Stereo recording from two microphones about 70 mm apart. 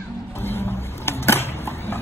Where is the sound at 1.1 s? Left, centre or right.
Left.